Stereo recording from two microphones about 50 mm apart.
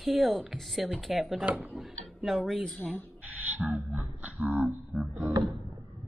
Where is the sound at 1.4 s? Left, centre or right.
Right.